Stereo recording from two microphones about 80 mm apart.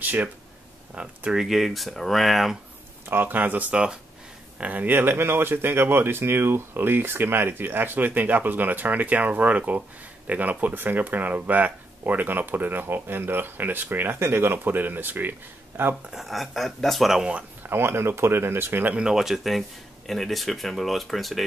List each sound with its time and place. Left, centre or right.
0.0 s speech: right
1.3 s speech: centre
3.1 s speech: right
16.1 s speech: centre
17.6 s speech: right
19.0 s speech: centre